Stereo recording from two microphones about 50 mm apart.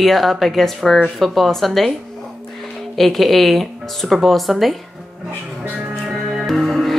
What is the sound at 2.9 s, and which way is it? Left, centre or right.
Speech, centre.